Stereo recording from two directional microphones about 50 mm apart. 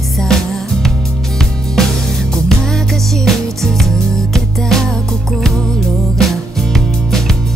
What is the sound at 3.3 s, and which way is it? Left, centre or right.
Music, centre.